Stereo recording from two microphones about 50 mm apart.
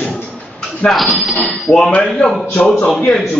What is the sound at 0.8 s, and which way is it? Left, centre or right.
A man's voice, left.